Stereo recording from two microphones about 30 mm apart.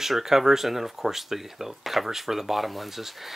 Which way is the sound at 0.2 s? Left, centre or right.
Centre.